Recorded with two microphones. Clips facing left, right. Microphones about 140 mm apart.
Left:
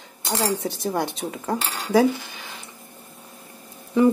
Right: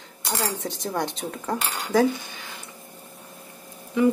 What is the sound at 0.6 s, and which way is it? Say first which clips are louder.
Speech: left 3 dB; 10° left (ahead or behind).